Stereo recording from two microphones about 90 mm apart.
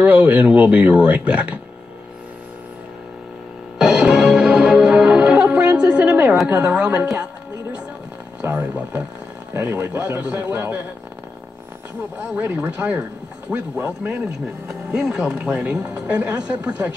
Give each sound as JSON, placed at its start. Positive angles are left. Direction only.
{"t": 0.0, "sound": "speech", "side_deg": -15}
{"t": 3.7, "sound": "music", "side_deg": -5}
{"t": 6.4, "sound": "speech", "side_deg": -15}
{"t": 8.4, "sound": "speech", "side_deg": -20}
{"t": 12.3, "sound": "speech", "side_deg": -20}
{"t": 14.7, "sound": "speech", "side_deg": -10}